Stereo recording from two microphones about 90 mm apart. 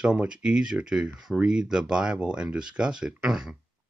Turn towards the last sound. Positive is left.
turn(degrees=-10)  # may be behind; listen again after turning